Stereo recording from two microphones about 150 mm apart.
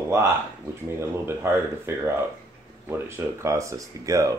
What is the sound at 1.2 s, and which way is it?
Speech, 15° right (ahead or behind).